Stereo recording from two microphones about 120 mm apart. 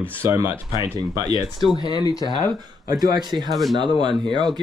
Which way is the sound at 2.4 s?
30° right (ahead or behind).